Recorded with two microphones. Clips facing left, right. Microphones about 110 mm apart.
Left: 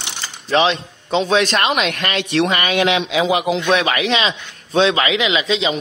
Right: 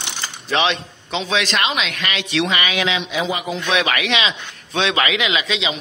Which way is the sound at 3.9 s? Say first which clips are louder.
Left 3 dB; 30° left (ahead or behind).